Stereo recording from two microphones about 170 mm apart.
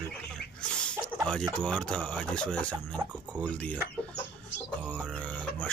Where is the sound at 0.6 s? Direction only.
5° left (ahead or behind).